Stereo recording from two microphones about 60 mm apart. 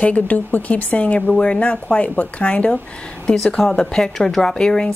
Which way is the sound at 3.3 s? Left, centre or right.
Centre.